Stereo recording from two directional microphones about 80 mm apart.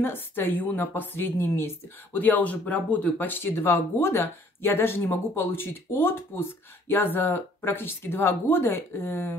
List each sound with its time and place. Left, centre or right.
0.0 s speech: left